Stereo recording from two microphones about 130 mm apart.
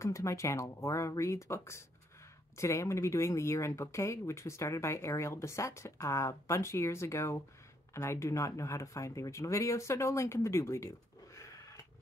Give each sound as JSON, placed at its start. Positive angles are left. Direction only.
{"t": 0.0, "sound": "speech", "side_deg": 25}